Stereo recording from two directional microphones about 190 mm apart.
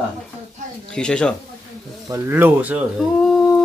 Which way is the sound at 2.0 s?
15° right (ahead or behind).